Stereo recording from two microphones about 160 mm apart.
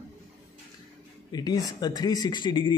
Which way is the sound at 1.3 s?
25° left (ahead or behind).